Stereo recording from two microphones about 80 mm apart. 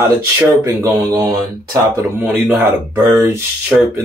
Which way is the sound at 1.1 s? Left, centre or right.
Right.